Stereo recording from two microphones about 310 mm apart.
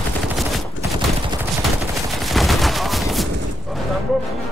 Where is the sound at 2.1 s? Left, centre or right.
Centre.